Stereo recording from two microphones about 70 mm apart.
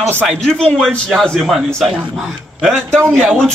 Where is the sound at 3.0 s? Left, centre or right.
Centre.